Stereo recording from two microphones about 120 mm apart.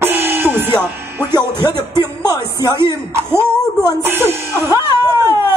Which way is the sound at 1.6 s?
40° left (ahead or behind).